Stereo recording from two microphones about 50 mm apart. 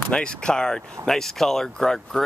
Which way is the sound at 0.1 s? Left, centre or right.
Centre.